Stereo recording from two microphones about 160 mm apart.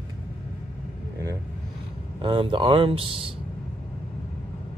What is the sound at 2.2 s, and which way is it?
Speech, 30° right (ahead or behind).